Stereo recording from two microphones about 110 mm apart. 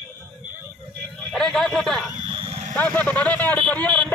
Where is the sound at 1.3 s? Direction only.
5° left (ahead or behind).